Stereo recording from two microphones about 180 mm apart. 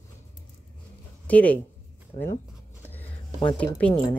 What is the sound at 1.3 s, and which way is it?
Speech, 10° left (ahead or behind).